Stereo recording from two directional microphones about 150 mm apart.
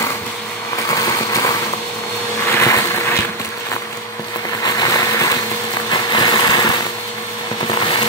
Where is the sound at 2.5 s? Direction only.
15° left (ahead or behind).